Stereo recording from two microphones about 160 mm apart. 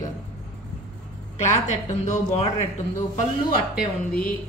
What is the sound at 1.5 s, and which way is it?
Speech, 45° left (ahead or behind).